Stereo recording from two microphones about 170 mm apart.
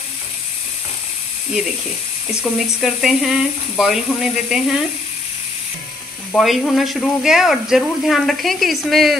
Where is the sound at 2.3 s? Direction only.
Centre (ahead or behind).